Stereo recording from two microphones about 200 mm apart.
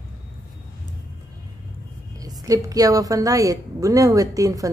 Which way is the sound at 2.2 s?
20° right (ahead or behind).